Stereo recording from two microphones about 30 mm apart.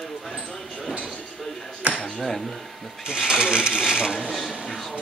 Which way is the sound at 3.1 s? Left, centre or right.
Right.